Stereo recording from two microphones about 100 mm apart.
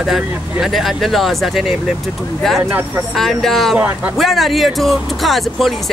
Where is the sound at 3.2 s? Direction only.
Centre (ahead or behind).